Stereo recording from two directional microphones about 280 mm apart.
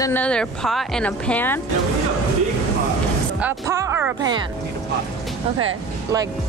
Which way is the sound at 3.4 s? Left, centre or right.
Centre.